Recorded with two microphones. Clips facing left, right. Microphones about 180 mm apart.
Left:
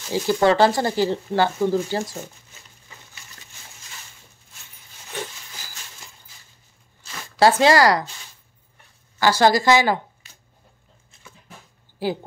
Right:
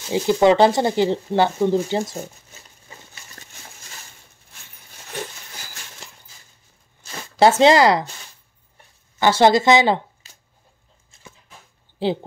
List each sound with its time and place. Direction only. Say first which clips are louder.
0.1 s speech: right 3 dB; 20° right (ahead or behind)
7.3 s speech: right 2 dB; 20° right (ahead or behind)
9.2 s speech: right 2 dB; 20° right (ahead or behind)